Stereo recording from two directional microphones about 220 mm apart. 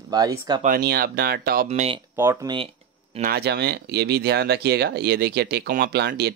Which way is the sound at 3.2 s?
45° right (ahead or behind).